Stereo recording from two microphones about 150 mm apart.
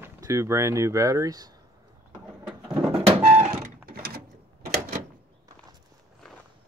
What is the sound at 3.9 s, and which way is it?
Mechanisms, 90° right.